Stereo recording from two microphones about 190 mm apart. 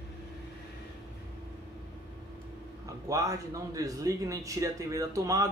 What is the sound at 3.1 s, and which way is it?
Speech, 15° right (ahead or behind).